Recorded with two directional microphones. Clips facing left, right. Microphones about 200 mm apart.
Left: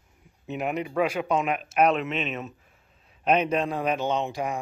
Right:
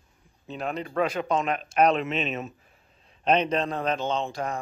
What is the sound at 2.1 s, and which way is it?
Speech, 35° right (ahead or behind).